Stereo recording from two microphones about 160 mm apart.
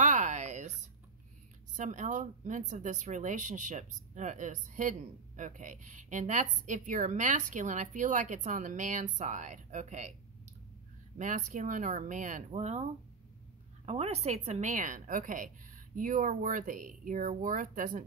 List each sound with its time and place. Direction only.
0.0 s a sound: 50° right (ahead or behind)
1.7 s speech: 50° right (ahead or behind)
11.1 s speech: 50° right (ahead or behind)
13.8 s a woman's voice: 40° right (ahead or behind)